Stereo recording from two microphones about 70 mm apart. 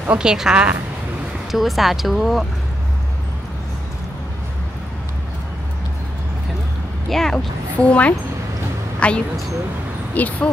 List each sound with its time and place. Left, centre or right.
0.0 s a woman's voice: centre
7.1 s speech: centre
7.3 s a woman's voice: centre